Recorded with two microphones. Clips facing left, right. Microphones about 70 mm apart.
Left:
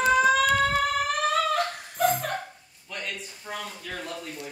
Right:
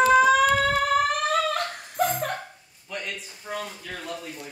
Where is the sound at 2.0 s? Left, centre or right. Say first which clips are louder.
Even; centre.